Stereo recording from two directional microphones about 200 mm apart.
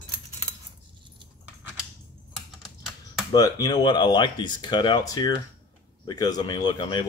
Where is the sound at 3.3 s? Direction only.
20° left (ahead or behind).